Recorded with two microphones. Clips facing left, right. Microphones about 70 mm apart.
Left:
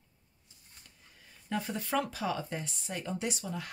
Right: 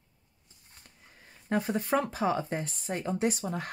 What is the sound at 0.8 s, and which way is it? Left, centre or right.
Speech, right.